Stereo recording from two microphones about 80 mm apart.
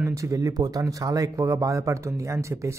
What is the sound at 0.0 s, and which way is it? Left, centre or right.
Speech, right.